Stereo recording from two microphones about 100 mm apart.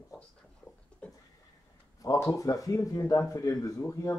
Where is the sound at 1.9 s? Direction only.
35° left (ahead or behind).